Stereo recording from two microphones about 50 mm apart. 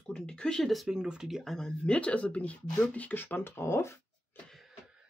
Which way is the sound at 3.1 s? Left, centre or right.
Left.